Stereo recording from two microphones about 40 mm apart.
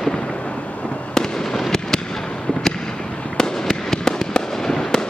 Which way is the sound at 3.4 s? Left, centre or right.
Centre.